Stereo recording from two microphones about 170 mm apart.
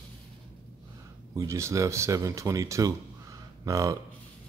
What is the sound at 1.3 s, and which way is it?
Speech, 20° right (ahead or behind).